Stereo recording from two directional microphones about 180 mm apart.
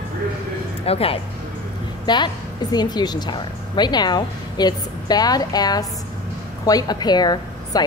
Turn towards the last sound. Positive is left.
turn(degrees=20)  # may be behind; listen again after turning